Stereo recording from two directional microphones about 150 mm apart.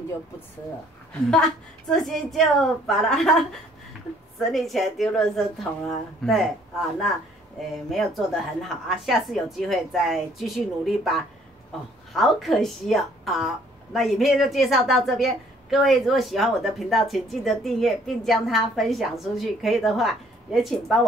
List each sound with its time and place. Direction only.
1.9 s a woman's voice: centre (ahead or behind)
4.5 s a woman's voice: centre (ahead or behind)
7.9 s a woman's voice: centre (ahead or behind)